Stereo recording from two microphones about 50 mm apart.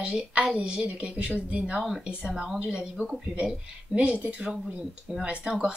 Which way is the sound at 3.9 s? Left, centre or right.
Right.